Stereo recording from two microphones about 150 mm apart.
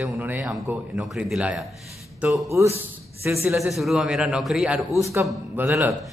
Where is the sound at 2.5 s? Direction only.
15° right (ahead or behind).